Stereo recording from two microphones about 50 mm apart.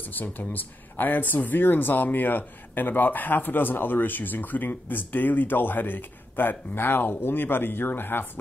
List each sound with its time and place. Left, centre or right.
0.0 s speech: left